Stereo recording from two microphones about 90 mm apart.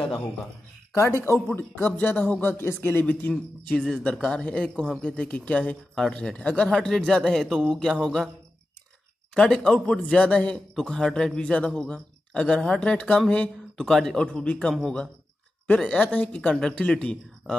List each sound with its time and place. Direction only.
0.9 s a man's voice: 30° left (ahead or behind); by 8.3 s 5° left (ahead or behind)
9.3 s a man's voice: 10° left (ahead or behind)